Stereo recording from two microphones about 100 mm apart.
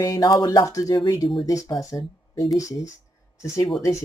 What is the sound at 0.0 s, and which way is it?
Speech, 40° left (ahead or behind).